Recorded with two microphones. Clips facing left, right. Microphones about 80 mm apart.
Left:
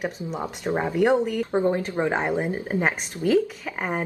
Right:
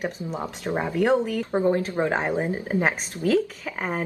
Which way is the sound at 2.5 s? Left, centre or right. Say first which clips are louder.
Even; centre.